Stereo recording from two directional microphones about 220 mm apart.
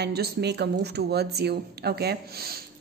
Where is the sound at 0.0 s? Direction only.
45° right (ahead or behind).